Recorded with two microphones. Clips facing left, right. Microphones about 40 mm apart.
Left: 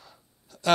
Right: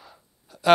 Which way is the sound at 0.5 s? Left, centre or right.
Centre.